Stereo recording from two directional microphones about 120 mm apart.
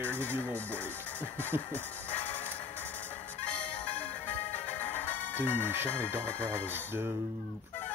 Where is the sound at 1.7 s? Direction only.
15° left (ahead or behind).